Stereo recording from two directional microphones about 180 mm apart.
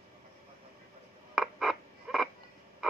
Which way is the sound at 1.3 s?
Centre (ahead or behind).